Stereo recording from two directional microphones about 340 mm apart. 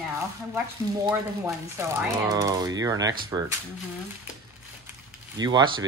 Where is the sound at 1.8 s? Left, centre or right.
Centre.